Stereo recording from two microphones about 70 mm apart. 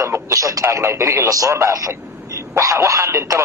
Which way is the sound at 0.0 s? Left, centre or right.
Right.